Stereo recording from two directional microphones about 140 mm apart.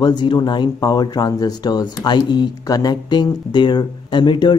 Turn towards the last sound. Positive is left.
turn(degrees=30)  # may be behind; listen again after turning